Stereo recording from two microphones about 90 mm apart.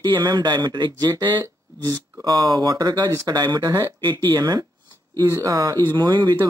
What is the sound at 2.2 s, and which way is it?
Speech, 45° right (ahead or behind).